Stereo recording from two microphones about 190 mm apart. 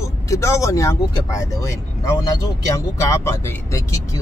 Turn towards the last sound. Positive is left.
turn(degrees=15)  # may be behind; listen again after turning